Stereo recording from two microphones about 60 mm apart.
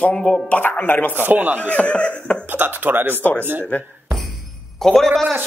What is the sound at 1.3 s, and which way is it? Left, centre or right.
Speech, right.